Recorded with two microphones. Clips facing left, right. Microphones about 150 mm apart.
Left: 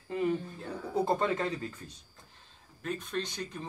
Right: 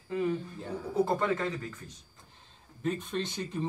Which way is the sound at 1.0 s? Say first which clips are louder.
Left 2 dB; 25° left (ahead or behind).